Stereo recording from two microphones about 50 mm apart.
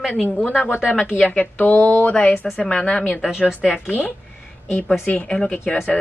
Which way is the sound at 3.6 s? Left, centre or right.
Centre.